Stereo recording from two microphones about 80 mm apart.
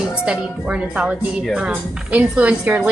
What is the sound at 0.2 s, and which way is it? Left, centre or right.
A woman's voice, centre.